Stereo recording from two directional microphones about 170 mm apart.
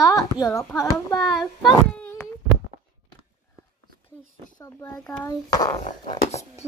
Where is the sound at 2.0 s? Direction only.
10° left (ahead or behind).